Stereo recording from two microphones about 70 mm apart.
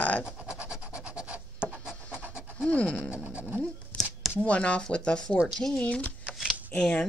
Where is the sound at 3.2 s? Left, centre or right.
Right.